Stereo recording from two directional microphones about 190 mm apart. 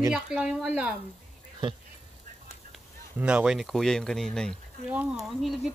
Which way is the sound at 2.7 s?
5° right (ahead or behind).